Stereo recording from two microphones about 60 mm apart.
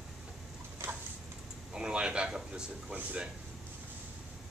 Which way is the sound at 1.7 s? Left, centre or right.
Centre.